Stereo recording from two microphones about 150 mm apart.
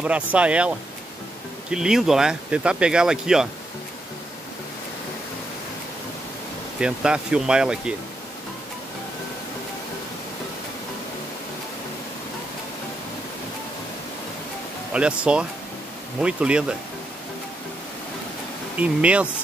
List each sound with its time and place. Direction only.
0.0 s speech: 10° right (ahead or behind)
6.8 s speech: 5° right (ahead or behind)
14.9 s speech: 5° right (ahead or behind)
18.8 s speech: 10° right (ahead or behind)